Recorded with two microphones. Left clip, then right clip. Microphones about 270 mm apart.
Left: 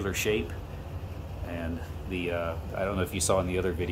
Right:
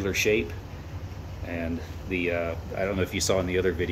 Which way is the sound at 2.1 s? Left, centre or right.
Left.